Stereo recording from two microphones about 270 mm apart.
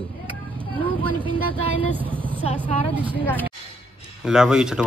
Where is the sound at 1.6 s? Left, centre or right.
Left.